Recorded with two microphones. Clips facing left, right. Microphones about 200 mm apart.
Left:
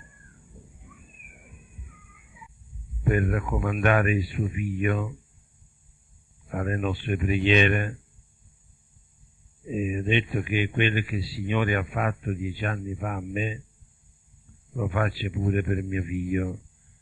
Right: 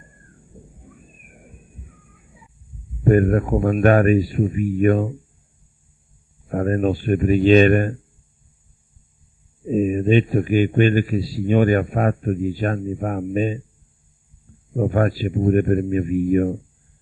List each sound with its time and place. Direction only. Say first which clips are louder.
0.0 s a sound: right 4 dB; 40° right (ahead or behind)
3.0 s speech: right 9 dB; 40° right (ahead or behind)
6.5 s speech: right 9 dB; 40° right (ahead or behind)
9.7 s speech: right 9 dB; 40° right (ahead or behind)
14.7 s speech: right 8 dB; 40° right (ahead or behind)